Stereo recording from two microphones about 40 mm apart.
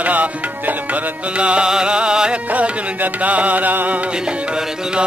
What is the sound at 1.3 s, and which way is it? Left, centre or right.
Music, right.